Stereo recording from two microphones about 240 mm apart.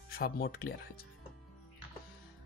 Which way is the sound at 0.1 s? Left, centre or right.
Left.